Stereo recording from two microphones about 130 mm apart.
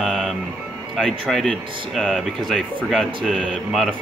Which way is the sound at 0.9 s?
5° left (ahead or behind).